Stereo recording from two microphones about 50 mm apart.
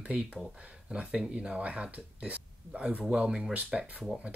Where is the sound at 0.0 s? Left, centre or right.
Right.